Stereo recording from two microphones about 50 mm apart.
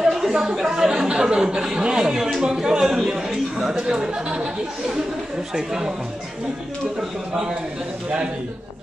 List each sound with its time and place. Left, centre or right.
0.0 s speech: centre
3.8 s speech: centre
7.0 s speech: centre